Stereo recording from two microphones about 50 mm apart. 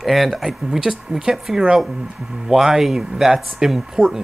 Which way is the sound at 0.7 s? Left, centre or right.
Centre.